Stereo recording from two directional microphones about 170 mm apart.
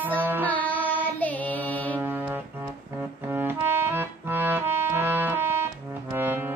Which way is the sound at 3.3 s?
15° right (ahead or behind).